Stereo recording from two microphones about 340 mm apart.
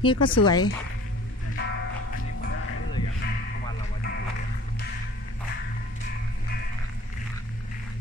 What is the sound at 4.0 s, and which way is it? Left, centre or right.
Music, left.